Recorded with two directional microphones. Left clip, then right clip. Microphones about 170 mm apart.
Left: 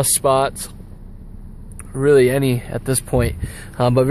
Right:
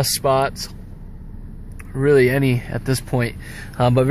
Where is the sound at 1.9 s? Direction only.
10° left (ahead or behind).